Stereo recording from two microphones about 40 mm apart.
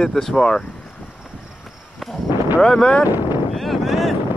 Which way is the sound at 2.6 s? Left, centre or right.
Centre.